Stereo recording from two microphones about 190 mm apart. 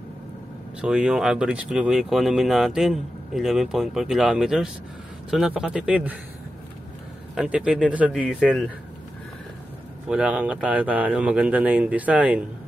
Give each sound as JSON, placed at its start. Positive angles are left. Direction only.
{"t": 0.7, "sound": "speech", "side_deg": -5}
{"t": 7.3, "sound": "speech", "side_deg": -5}
{"t": 10.0, "sound": "speech", "side_deg": -5}